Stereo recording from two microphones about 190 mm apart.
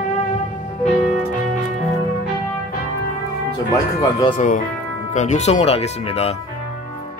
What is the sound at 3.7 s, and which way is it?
Speech, 20° left (ahead or behind).